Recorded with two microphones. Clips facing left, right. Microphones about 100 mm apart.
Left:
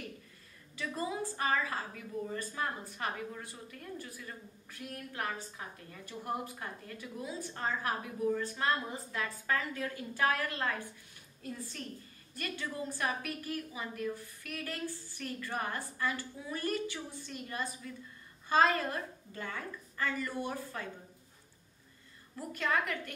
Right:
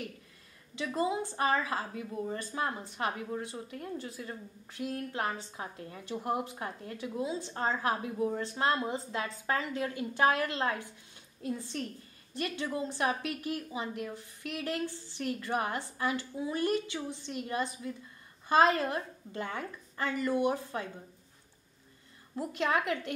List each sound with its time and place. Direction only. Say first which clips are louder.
0.7 s a woman's voice: right 5 dB; 20° right (ahead or behind)
22.3 s a woman's voice: right 3 dB; 25° right (ahead or behind)